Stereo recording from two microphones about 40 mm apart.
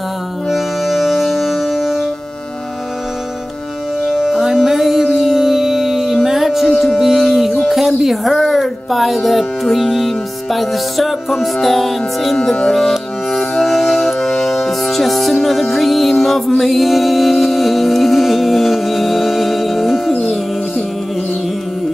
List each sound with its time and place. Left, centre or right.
0.5 s music: centre
4.2 s music: centre
7.7 s speech: centre
11.5 s music: centre
12.4 s speech: centre
13.4 s music: centre